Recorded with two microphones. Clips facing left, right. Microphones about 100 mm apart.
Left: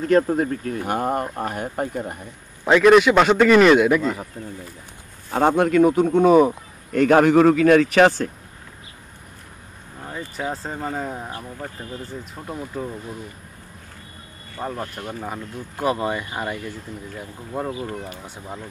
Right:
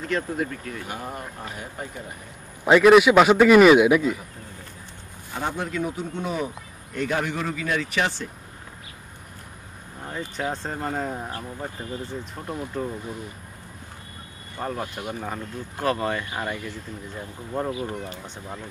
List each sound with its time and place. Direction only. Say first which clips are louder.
0.0 s speech: left 9 dB; 45° left (ahead or behind)
2.6 s a man's voice: left 1 dB; 5° right (ahead or behind)
5.3 s speech: left 11 dB; 60° left (ahead or behind)
10.0 s a man's voice: left 1 dB; 5° left (ahead or behind)
14.8 s speech: even; 10° right (ahead or behind)
15.2 s speech: left 1 dB; 15° left (ahead or behind)
17.5 s speech: even; 10° left (ahead or behind)